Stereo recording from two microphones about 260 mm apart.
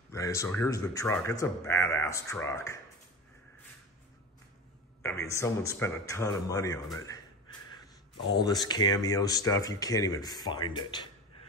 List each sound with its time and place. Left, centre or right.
0.1 s speech: centre
5.0 s speech: centre